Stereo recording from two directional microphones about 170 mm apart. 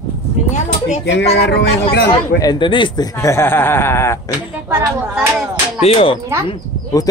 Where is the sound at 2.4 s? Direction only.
25° left (ahead or behind).